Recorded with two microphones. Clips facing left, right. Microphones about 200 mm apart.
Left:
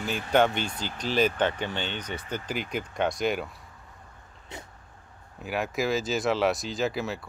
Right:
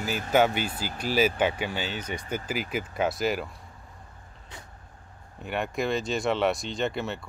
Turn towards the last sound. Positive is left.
turn(degrees=0)  # may be behind; listen again after turning